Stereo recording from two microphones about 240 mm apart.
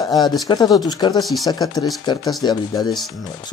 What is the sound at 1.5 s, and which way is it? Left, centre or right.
Speech, centre.